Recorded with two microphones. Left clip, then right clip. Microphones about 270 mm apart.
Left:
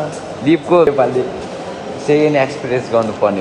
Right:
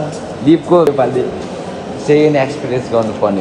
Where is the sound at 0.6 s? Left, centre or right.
Left.